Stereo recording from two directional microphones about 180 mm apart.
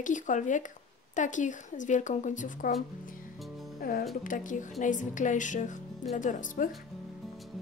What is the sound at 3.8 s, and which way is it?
Speech, 55° left (ahead or behind).